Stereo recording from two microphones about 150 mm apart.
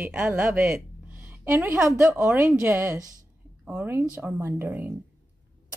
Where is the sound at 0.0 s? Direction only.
15° right (ahead or behind).